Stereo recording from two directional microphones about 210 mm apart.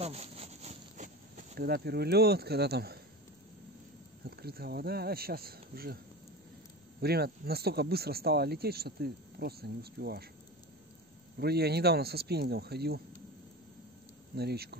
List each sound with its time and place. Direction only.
0.0 s insect: 30° right (ahead or behind); by 3.0 s 50° right (ahead or behind)
4.2 s speech: 45° right (ahead or behind)
7.0 s speech: 50° right (ahead or behind)
11.3 s speech: 50° right (ahead or behind)
14.3 s speech: 50° right (ahead or behind)